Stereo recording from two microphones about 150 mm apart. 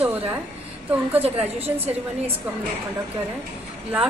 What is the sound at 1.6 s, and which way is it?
Speech, 45° right (ahead or behind).